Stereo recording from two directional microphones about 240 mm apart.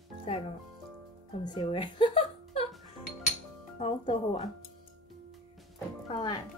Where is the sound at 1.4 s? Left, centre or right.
Centre.